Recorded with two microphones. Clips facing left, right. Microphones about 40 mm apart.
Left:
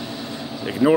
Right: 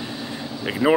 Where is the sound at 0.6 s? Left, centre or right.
Right.